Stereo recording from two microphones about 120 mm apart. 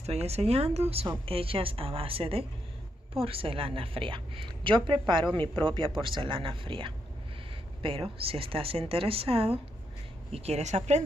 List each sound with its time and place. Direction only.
0.0 s a woman's voice: 60° right (ahead or behind)
10.3 s a woman's voice: 65° right (ahead or behind)